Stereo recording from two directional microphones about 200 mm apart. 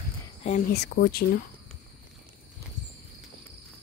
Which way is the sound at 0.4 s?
35° left (ahead or behind).